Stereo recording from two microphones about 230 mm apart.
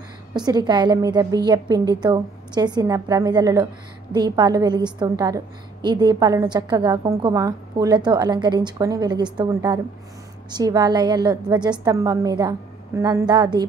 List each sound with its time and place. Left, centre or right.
0.3 s a woman's voice: centre